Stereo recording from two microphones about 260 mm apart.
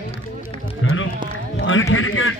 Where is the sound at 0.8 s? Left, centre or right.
Left.